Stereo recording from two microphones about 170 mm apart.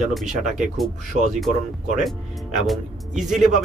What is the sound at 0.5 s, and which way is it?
Speech, centre (ahead or behind).